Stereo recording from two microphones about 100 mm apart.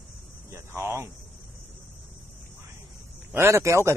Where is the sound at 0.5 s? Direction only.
25° right (ahead or behind).